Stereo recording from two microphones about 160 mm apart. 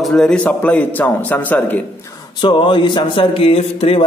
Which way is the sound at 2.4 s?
30° left (ahead or behind).